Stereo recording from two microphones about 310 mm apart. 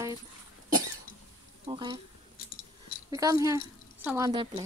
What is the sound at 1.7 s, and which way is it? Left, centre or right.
Speech, centre.